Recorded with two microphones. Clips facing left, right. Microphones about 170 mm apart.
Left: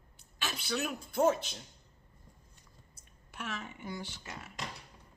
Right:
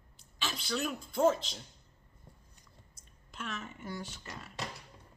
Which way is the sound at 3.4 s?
10° left (ahead or behind).